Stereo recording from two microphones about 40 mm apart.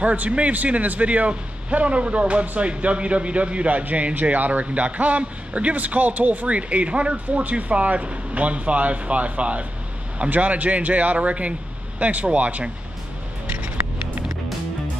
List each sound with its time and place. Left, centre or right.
0.0 s a man's voice: right